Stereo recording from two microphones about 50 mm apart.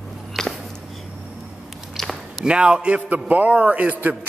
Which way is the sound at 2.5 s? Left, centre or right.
Centre.